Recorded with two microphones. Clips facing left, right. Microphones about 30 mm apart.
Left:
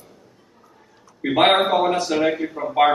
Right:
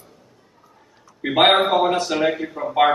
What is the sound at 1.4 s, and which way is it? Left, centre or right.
A man's voice, centre.